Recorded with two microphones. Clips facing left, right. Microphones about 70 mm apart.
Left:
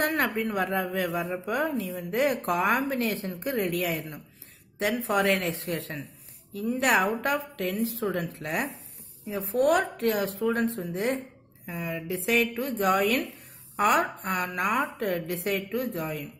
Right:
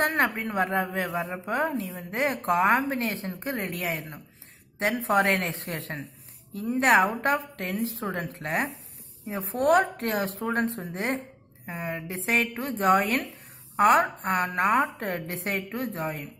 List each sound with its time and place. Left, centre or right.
0.0 s a woman's voice: right